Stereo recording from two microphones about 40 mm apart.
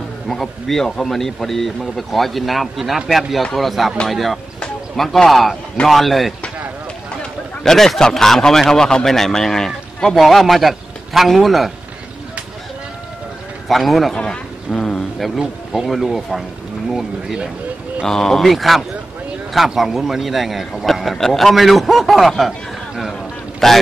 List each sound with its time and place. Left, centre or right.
0.3 s a man's voice: centre
7.6 s speech: centre
10.0 s a man's voice: centre
13.7 s a man's voice: centre
14.1 s speech: left
14.7 s speech: centre
15.1 s a man's voice: centre
18.0 s a man's voice: centre
23.6 s speech: centre